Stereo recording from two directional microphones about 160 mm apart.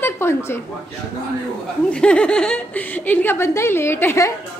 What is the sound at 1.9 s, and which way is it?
Speech, 5° left (ahead or behind).